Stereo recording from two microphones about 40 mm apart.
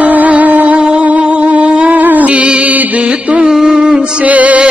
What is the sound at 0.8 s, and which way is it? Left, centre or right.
Music, right.